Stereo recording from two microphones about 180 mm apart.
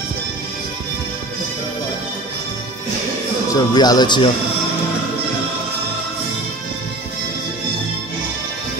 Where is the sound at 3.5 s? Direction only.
20° left (ahead or behind).